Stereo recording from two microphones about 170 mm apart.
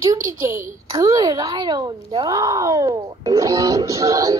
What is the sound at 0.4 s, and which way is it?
A woman's voice, 15° right (ahead or behind).